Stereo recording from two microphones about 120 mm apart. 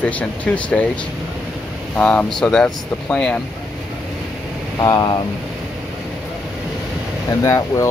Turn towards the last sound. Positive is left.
turn(degrees=25)  # may be behind; listen again after turning